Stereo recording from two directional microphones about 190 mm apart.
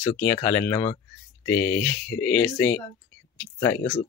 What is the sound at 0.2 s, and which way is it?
Speech, 10° left (ahead or behind).